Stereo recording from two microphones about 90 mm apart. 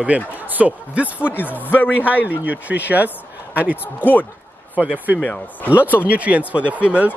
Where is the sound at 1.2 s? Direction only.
20° left (ahead or behind).